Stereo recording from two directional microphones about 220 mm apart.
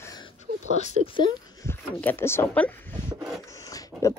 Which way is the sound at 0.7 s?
30° left (ahead or behind).